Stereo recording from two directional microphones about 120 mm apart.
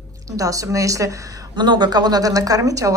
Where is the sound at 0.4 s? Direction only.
30° right (ahead or behind).